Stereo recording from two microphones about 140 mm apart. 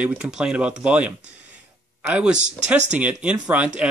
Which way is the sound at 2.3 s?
55° right (ahead or behind).